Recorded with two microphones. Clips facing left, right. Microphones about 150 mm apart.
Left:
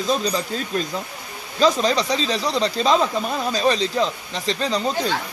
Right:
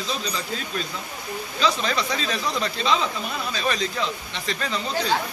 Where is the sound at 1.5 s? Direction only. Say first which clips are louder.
Left 6 dB; 40° left (ahead or behind).